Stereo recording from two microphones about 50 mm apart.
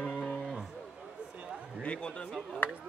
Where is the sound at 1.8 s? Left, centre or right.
Left.